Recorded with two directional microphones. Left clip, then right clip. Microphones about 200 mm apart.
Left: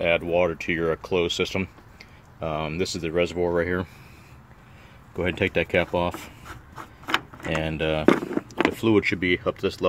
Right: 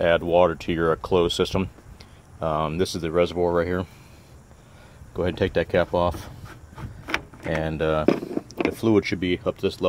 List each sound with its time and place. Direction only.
0.0 s speech: 20° right (ahead or behind); by 3.9 s 5° right (ahead or behind)
5.1 s speech: 10° right (ahead or behind)